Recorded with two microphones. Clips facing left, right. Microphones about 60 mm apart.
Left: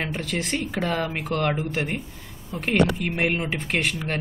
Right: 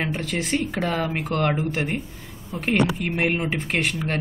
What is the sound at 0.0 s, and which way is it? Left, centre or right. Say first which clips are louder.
Speech: right 2 dB; centre.